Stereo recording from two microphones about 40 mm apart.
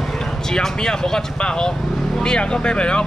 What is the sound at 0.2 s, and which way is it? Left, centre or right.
Speech, centre.